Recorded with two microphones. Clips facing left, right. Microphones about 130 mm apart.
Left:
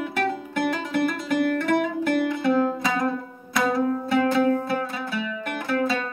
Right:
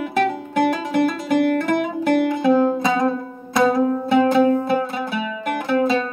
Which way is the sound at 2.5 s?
25° right (ahead or behind).